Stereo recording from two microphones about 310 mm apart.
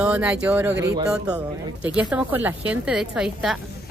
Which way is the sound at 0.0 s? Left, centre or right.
Centre.